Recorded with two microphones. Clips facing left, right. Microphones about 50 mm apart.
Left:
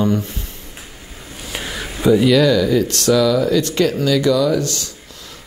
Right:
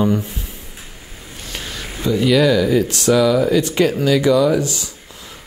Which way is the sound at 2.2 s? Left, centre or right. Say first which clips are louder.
Left 1 dB; centre.